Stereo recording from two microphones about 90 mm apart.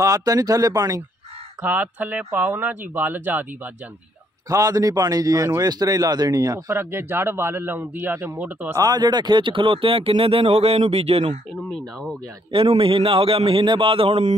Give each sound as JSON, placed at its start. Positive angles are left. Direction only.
{"t": 0.0, "sound": "speech", "side_deg": -40}
{"t": 1.6, "sound": "speech", "side_deg": -20}
{"t": 4.5, "sound": "a man's voice", "side_deg": -40}
{"t": 6.7, "sound": "speech", "side_deg": -25}
{"t": 8.7, "sound": "speech", "side_deg": -45}
{"t": 11.7, "sound": "speech", "side_deg": 5}
{"t": 12.5, "sound": "speech", "side_deg": -90}